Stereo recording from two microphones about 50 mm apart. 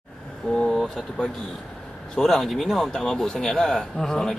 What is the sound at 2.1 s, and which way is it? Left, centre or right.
A man's voice, centre.